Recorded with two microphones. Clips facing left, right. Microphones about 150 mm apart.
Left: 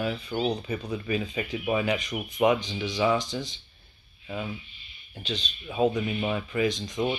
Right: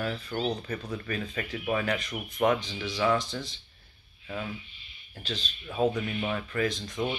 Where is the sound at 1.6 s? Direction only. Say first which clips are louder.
Left 2 dB; 10° left (ahead or behind).